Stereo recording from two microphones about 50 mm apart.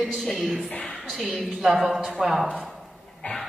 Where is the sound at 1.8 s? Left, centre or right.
Centre.